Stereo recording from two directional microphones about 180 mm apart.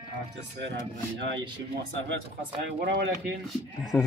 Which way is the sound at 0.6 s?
80° right.